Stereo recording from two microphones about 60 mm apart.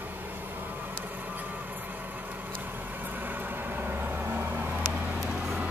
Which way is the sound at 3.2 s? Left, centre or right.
Right.